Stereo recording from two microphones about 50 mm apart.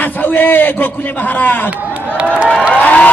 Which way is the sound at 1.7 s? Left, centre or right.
Right.